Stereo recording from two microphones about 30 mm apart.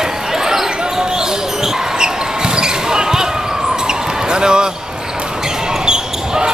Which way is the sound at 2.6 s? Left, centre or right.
Right.